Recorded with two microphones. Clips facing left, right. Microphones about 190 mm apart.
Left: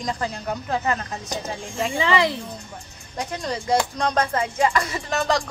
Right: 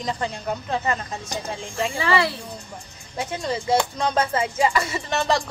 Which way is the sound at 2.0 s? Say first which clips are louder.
Left 2 dB; 15° left (ahead or behind).